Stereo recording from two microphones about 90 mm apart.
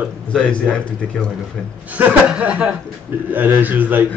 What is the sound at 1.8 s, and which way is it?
A man's voice, 15° right (ahead or behind).